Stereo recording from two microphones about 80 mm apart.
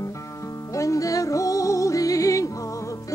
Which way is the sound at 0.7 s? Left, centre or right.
Left.